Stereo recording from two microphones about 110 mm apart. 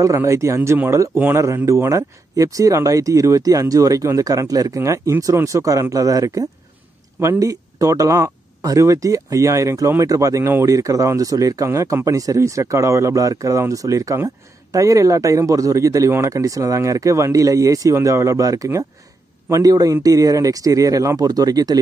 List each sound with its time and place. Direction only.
0.0 s speech: 30° right (ahead or behind)